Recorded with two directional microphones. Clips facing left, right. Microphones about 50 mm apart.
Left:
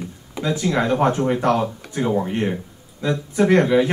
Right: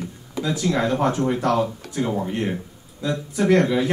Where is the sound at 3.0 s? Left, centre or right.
Left.